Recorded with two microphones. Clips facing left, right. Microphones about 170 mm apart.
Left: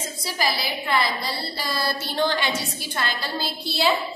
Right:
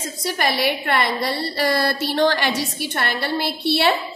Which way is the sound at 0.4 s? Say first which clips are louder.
Right 5 dB; 70° right (ahead or behind).